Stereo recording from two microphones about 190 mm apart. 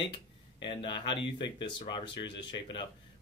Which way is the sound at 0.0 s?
25° left (ahead or behind).